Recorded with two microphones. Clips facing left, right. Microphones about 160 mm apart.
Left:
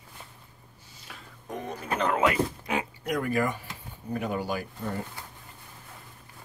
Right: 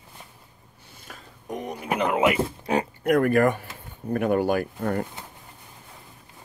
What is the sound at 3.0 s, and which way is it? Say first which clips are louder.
Speech: right 9 dB; 60° right (ahead or behind).